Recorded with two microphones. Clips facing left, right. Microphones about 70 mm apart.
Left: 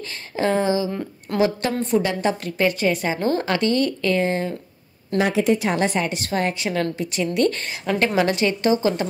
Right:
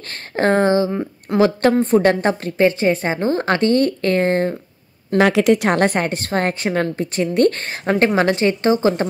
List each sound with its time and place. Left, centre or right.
0.1 s a woman's voice: right
5.1 s a woman's voice: right